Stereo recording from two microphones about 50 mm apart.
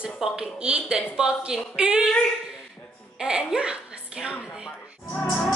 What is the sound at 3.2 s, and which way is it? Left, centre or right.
A woman's voice, centre.